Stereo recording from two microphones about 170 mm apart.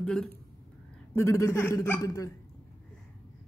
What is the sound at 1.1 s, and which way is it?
Speech, 15° left (ahead or behind).